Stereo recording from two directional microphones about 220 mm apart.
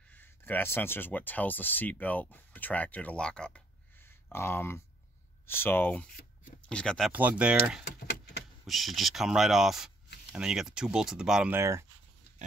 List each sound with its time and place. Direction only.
0.1 s speech: 10° left (ahead or behind)
7.1 s speech: 5° right (ahead or behind)
7.8 s a sound: 50° left (ahead or behind)
8.6 s speech: centre (ahead or behind)